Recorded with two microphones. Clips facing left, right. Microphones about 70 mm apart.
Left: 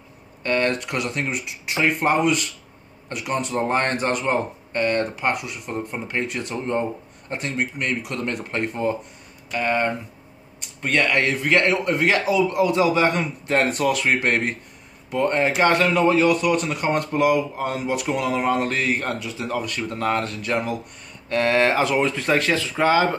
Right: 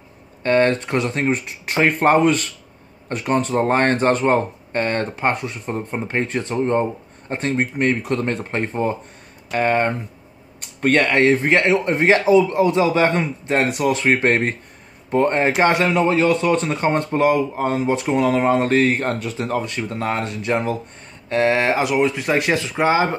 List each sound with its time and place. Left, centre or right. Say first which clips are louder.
0.4 s speech: right 5 dB; right
10.6 s a sound: right 7 dB; right
11.0 s speech: right 4 dB; right
13.5 s speech: right 1 dB; centre
13.9 s speech: right 4 dB; right
19.5 s speech: right 1 dB; right